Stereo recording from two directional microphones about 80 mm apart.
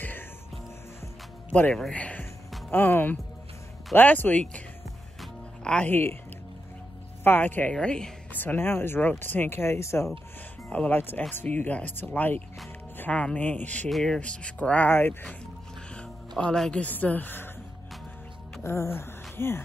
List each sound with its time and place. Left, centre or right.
1.5 s speech: centre
5.9 s speech: left
7.2 s speech: left
7.7 s speech: centre
8.4 s speech: left
10.7 s speech: centre
13.8 s speech: centre; by 15.1 s left
16.0 s music: centre
16.8 s speech: centre
18.6 s speech: left